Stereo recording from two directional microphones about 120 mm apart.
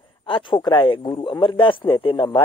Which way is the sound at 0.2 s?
40° left (ahead or behind).